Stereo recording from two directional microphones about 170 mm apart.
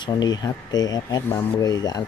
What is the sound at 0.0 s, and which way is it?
Speech, 25° left (ahead or behind).